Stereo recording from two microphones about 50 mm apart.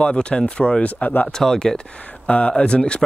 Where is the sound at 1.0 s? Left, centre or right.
Left.